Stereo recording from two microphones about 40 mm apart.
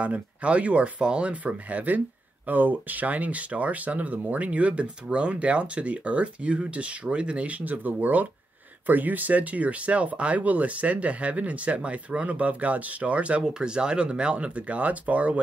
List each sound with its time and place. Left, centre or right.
0.0 s speech: right
13.4 s speech: right